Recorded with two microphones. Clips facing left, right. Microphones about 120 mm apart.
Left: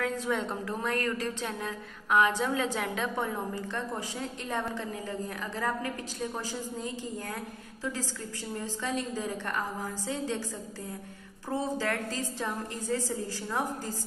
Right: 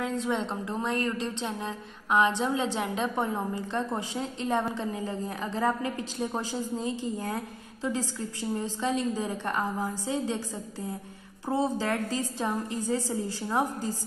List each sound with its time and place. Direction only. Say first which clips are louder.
0.0 s a woman's voice: right 1 dB; 25° right (ahead or behind)